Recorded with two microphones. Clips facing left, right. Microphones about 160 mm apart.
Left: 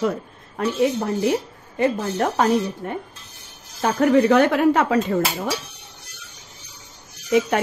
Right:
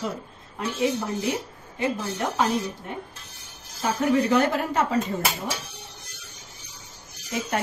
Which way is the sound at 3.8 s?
65° left (ahead or behind).